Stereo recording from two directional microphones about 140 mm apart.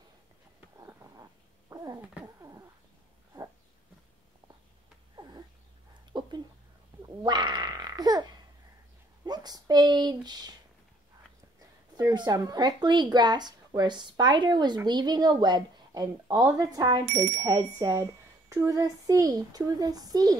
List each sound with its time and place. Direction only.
0.7 s cat: 25° right (ahead or behind)
5.1 s a sound: 30° right (ahead or behind)
7.2 s babbling: 35° right (ahead or behind)
9.2 s a sound: 30° right (ahead or behind)
12.0 s a woman's voice: 30° right (ahead or behind)
17.1 s speech: 15° right (ahead or behind)
17.6 s a woman's voice: 25° right (ahead or behind)